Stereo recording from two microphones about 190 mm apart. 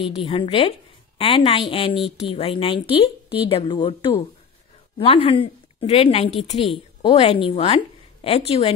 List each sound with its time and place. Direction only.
0.2 s a woman's voice: 30° left (ahead or behind)